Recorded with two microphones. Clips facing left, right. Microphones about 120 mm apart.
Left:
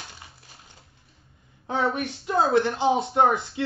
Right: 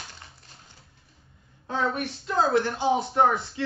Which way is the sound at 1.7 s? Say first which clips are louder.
Left 2 dB; 15° left (ahead or behind).